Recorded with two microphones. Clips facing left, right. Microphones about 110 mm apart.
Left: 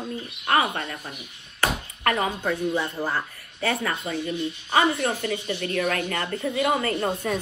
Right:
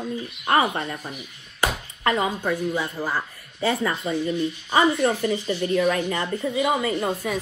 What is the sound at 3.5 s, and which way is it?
A woman's voice, 25° right (ahead or behind).